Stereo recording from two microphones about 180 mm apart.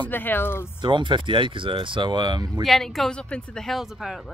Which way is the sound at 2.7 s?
Centre (ahead or behind).